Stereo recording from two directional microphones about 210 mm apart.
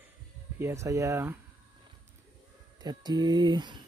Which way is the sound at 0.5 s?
15° right (ahead or behind).